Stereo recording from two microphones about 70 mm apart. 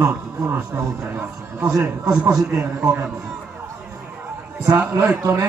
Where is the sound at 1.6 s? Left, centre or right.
Right.